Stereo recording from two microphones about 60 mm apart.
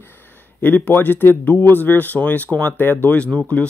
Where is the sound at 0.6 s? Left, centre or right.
Left.